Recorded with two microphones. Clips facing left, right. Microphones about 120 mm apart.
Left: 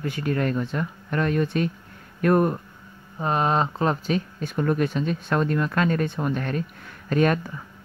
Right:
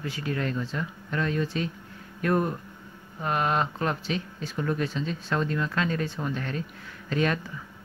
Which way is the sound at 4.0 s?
50° left (ahead or behind).